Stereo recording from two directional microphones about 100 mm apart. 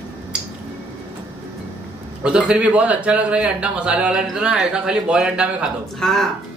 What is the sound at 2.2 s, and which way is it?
A man's voice, 10° right (ahead or behind).